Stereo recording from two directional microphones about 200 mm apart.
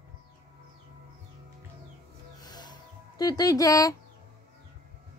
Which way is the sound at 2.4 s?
20° left (ahead or behind).